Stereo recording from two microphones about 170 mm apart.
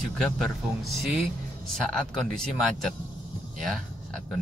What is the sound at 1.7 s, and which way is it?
Speech, 5° left (ahead or behind).